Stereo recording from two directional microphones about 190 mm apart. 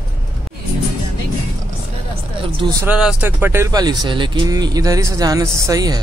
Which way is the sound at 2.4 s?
25° right (ahead or behind).